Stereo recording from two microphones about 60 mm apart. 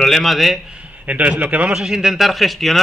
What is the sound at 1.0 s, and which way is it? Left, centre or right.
Speech, right.